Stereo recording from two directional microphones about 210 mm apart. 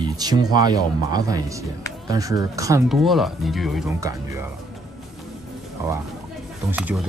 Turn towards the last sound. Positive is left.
turn(degrees=-5)  # may be behind; listen again after turning